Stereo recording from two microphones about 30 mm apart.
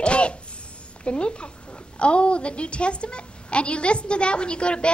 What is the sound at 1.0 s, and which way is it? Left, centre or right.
A woman's voice, left.